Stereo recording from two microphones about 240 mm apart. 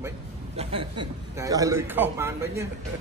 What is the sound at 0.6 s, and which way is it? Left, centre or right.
A man's voice, right.